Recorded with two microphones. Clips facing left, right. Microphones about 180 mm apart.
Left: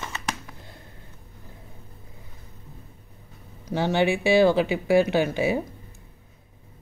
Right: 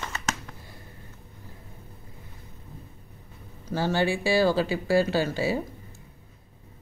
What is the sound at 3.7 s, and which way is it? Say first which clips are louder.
Speech: left 3 dB; 20° left (ahead or behind).